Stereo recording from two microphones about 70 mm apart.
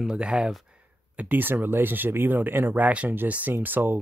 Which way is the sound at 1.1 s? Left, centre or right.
Right.